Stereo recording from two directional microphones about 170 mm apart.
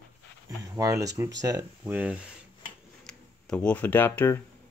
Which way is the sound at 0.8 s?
20° right (ahead or behind).